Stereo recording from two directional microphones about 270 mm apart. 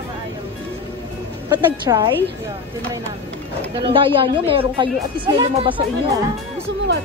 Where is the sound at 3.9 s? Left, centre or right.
Centre.